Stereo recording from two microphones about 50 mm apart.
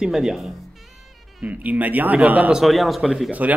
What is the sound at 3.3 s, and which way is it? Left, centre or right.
Speech, right.